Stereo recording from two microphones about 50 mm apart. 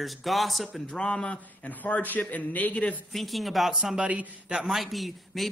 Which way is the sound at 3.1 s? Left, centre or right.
Centre.